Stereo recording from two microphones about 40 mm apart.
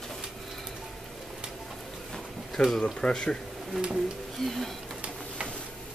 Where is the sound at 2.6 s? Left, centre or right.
Centre.